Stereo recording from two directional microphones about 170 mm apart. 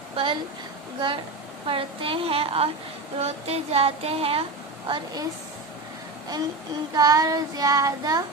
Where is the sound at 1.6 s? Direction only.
30° right (ahead or behind).